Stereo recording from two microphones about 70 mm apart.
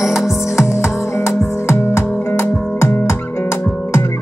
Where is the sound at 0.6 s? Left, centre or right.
Left.